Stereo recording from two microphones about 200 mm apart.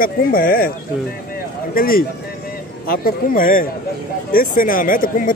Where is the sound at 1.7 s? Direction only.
45° left (ahead or behind).